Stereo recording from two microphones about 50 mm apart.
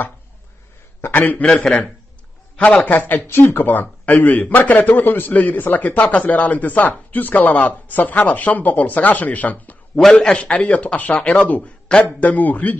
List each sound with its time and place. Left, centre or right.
1.1 s a man's voice: left
1.4 s a man's voice: centre
2.9 s a man's voice: left
10.1 s a man's voice: left